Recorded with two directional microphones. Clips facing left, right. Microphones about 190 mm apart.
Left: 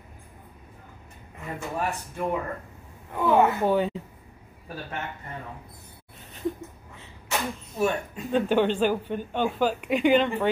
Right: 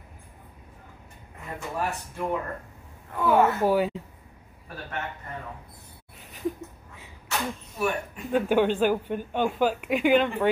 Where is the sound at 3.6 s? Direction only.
5° right (ahead or behind).